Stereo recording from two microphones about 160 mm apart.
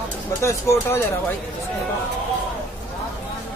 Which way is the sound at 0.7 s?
15° left (ahead or behind).